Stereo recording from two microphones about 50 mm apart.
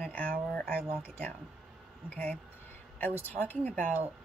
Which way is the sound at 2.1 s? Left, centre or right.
Left.